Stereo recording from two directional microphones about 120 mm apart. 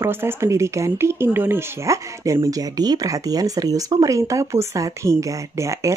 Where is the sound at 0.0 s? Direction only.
20° right (ahead or behind).